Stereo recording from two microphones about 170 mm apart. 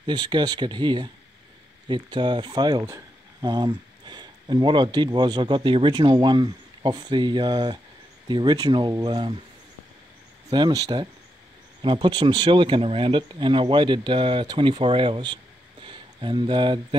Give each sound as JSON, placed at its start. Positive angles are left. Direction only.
{"t": 0.0, "sound": "speech", "side_deg": -25}
{"t": 10.5, "sound": "speech", "side_deg": -25}
{"t": 15.8, "sound": "a sound", "side_deg": -30}